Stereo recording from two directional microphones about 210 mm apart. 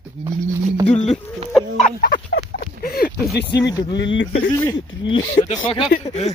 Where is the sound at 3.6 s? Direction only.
20° left (ahead or behind).